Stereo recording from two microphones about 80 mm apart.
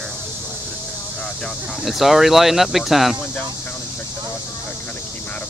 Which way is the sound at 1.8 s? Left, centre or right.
Centre.